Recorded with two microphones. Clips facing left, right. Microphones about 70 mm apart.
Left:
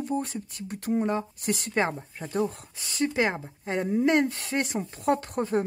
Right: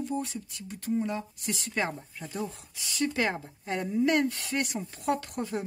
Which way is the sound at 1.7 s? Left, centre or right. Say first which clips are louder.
Left 3 dB; left.